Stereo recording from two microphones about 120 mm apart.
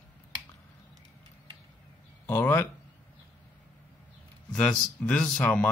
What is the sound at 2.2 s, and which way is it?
Speech, 15° left (ahead or behind).